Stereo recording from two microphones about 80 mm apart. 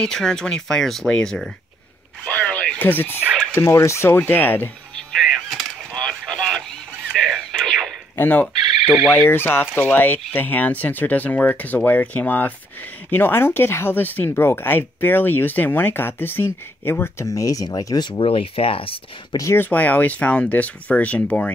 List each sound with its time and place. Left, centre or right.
0.0 s speech: centre
2.2 s a sound: centre
2.8 s speech: left
4.1 s speech: left
4.9 s power windows: centre
5.9 s a sound: centre
8.2 s speech: left
8.8 s speech: centre
9.1 s speech: left
17.3 s speech: left
19.5 s speech: left